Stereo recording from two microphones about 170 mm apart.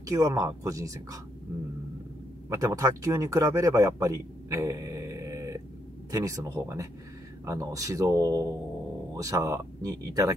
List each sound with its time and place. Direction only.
0.0 s speech: 20° right (ahead or behind)
2.5 s a man's voice: 20° right (ahead or behind)